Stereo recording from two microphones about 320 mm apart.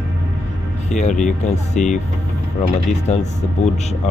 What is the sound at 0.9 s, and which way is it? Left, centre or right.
Speech, left.